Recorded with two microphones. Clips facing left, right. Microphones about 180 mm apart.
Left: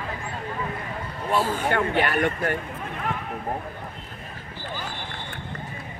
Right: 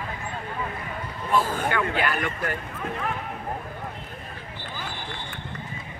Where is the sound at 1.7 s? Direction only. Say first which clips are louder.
Left 4 dB; 45° left (ahead or behind).